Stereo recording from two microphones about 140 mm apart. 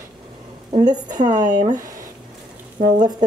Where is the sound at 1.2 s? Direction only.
60° right (ahead or behind).